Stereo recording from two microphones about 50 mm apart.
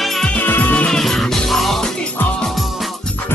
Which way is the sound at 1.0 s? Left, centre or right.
Centre.